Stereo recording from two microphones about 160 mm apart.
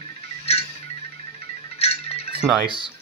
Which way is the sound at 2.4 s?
Centre (ahead or behind).